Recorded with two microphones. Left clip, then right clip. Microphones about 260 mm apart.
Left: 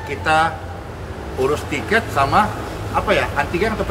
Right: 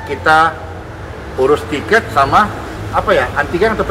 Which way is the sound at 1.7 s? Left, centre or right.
Centre.